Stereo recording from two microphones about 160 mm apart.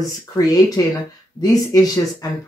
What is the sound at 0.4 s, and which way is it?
Speech, 25° left (ahead or behind).